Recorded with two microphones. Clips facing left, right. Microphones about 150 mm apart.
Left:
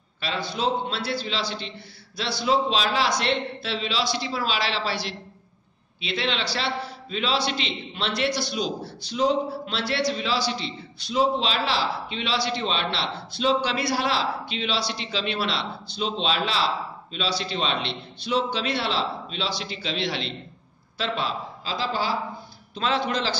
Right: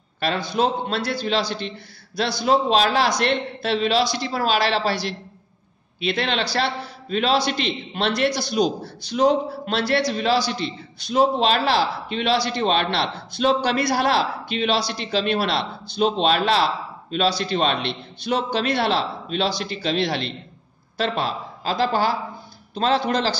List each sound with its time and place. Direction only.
0.5 s a man's voice: 50° right (ahead or behind)
22.8 s a man's voice: 40° right (ahead or behind)